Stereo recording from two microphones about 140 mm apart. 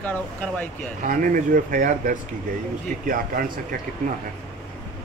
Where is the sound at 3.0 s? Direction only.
80° right.